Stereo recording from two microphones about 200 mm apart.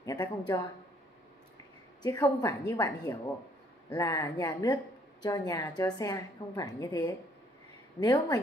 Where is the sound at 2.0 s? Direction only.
15° left (ahead or behind).